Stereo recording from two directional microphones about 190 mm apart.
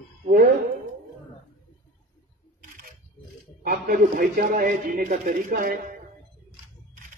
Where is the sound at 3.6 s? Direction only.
50° right (ahead or behind).